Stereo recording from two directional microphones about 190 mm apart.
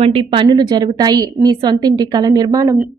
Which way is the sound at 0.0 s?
25° right (ahead or behind).